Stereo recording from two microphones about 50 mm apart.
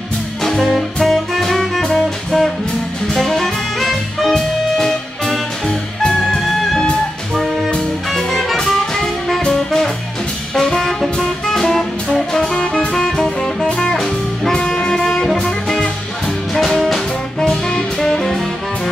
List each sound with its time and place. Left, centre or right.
0.4 s music: centre
8.1 s jazz: centre
10.5 s music: centre
16.5 s music: centre